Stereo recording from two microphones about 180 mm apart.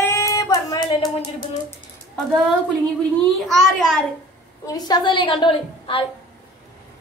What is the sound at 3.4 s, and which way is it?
Speech, centre (ahead or behind).